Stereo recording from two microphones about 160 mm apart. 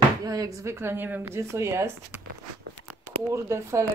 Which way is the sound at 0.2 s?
25° right (ahead or behind).